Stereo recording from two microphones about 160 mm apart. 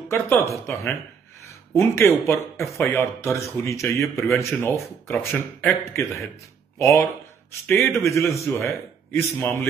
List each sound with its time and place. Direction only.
0.1 s speech: 15° left (ahead or behind)
5.1 s speech: centre (ahead or behind)
6.8 s a man's voice: 20° left (ahead or behind)